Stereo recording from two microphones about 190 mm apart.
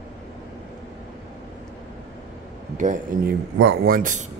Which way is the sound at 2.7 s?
40° right (ahead or behind).